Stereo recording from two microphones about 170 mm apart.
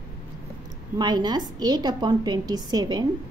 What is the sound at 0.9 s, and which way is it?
A woman's voice, 25° right (ahead or behind).